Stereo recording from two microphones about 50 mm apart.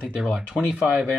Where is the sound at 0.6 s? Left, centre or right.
Right.